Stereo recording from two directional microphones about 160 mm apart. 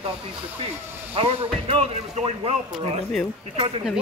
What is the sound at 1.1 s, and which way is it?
A man's voice, 40° right (ahead or behind).